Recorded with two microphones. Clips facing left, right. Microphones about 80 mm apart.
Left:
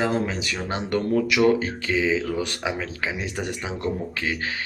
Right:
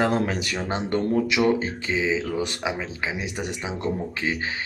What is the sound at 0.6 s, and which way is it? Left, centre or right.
Speech, right.